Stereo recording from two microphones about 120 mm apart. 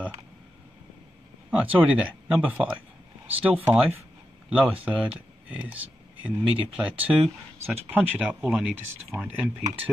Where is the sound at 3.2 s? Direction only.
10° right (ahead or behind).